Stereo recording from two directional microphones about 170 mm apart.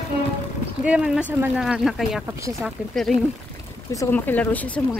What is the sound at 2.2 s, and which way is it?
Speech, 15° right (ahead or behind).